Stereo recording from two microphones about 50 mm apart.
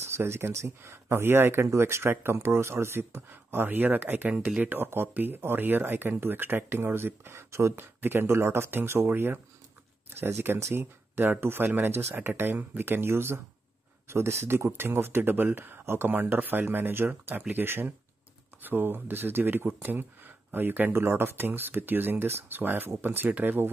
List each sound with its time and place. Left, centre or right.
0.1 s speech: right
4.8 s speech: right
7.7 s speech: right
16.1 s speech: right
20.9 s speech: right